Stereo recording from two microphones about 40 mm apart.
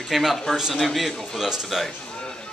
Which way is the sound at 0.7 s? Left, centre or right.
Centre.